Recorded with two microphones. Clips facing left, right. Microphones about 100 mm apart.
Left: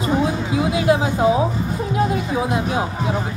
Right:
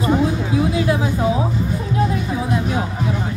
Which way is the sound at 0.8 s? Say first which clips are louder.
Left 3 dB; 20° left (ahead or behind).